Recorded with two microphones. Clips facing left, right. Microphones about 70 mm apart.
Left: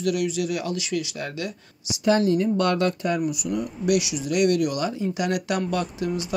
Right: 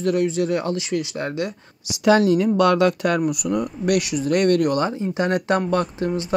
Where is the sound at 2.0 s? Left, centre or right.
Right.